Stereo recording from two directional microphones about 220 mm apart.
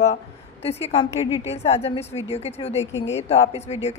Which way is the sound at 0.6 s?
25° left (ahead or behind).